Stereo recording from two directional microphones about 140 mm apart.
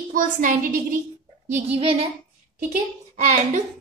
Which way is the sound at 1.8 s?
45° right (ahead or behind).